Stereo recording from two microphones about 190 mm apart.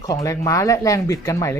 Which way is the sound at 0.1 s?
15° left (ahead or behind).